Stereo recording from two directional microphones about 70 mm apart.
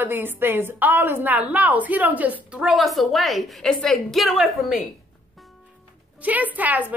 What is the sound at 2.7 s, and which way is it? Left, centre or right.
A woman's voice, centre.